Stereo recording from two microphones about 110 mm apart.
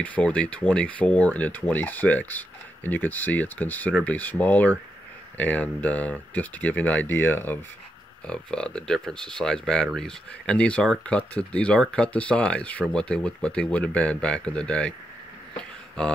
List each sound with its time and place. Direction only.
0.0 s speech: 10° left (ahead or behind)